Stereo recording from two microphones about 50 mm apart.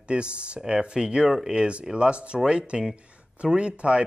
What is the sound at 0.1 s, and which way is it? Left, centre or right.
Speech, right.